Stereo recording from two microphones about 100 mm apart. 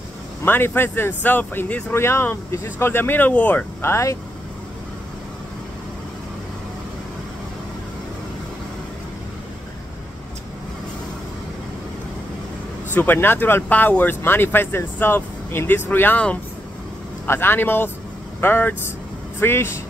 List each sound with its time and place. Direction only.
0.5 s speech: 20° left (ahead or behind)
12.9 s speech: 20° left (ahead or behind)